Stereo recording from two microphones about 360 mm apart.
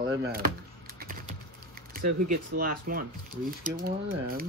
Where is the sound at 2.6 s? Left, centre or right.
Right.